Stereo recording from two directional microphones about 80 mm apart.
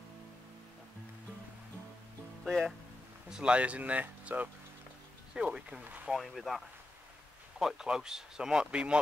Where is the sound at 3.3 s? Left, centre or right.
Centre.